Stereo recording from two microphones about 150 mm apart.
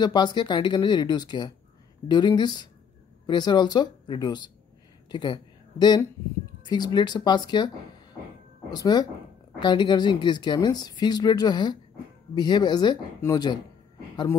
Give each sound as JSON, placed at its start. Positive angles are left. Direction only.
{"t": 0.0, "sound": "speech", "side_deg": 30}